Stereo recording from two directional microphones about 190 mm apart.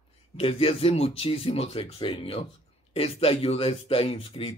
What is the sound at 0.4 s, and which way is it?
Speech, 30° left (ahead or behind).